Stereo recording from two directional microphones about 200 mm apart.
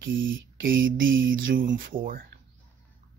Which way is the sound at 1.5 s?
45° right (ahead or behind).